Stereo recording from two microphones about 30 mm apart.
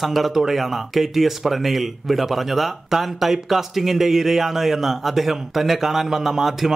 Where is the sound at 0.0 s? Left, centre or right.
Centre.